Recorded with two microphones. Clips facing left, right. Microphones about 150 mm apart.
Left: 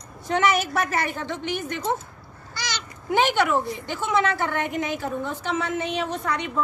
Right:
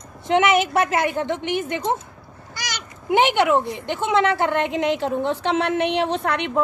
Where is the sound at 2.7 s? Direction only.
20° right (ahead or behind).